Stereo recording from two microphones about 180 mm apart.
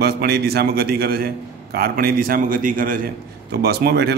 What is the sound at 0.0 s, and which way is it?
A man's voice, 60° right (ahead or behind).